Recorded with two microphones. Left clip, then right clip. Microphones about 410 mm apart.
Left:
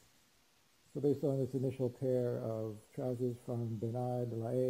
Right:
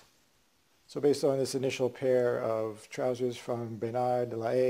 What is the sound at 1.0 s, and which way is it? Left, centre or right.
Speech, centre.